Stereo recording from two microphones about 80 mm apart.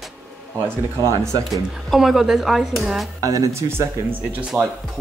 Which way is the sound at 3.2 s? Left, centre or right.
Right.